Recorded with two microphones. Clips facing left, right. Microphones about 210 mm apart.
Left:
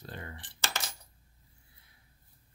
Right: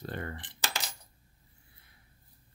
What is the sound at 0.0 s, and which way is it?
Coin, 60° right (ahead or behind).